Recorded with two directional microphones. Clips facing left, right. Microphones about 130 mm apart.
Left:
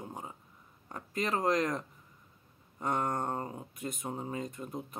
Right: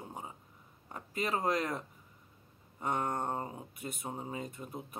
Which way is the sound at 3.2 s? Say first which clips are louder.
Left 1 dB; 20° right (ahead or behind).